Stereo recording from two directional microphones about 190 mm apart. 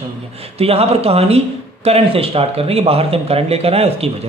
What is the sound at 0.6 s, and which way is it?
Speech, 30° right (ahead or behind).